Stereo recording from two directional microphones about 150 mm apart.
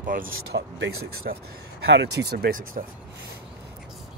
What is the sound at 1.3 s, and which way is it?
Speech, 90° right.